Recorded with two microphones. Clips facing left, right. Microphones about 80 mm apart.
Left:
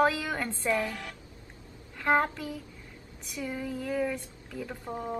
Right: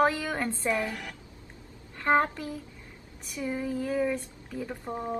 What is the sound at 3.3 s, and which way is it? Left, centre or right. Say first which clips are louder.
Speech: right 3 dB; centre.